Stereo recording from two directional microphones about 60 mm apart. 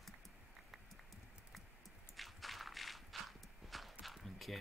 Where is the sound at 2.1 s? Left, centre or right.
Centre.